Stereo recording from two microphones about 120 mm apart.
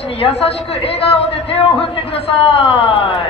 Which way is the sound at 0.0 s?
55° left (ahead or behind).